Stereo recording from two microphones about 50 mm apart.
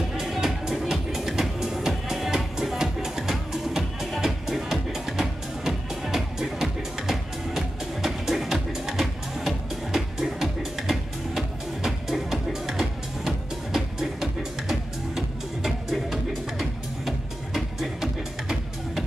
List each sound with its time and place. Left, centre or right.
0.2 s music: centre